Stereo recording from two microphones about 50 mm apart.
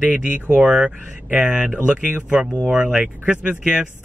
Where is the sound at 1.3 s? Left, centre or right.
Right.